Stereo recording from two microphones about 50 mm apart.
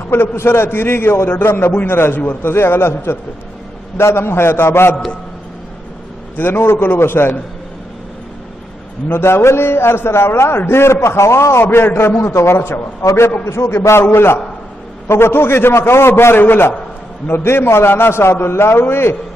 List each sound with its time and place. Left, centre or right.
0.1 s a man's voice: left
1.7 s a man's voice: left
6.3 s a man's voice: left
9.1 s a man's voice: left
11.7 s a man's voice: left
13.0 s a man's voice: left